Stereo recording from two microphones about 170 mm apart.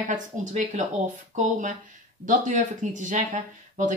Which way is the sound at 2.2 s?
45° right (ahead or behind).